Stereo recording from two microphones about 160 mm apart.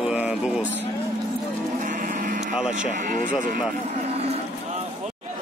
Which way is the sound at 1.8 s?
55° right (ahead or behind).